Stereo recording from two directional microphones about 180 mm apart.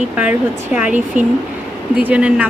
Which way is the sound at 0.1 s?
5° right (ahead or behind).